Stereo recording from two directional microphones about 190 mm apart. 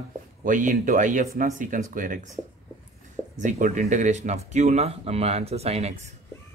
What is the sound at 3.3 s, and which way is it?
Speech, 40° right (ahead or behind).